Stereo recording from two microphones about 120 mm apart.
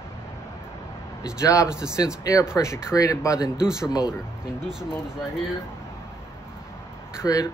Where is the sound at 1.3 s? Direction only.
30° left (ahead or behind).